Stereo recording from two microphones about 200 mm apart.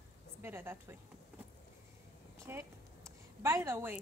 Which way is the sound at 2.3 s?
15° right (ahead or behind).